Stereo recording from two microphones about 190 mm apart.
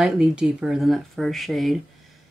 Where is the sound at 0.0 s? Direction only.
5° right (ahead or behind).